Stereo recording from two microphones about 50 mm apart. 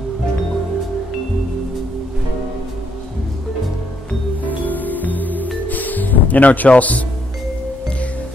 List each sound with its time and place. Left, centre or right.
4.5 s music: left